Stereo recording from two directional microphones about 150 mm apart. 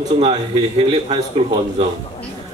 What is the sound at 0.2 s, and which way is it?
A man's voice, 45° right (ahead or behind).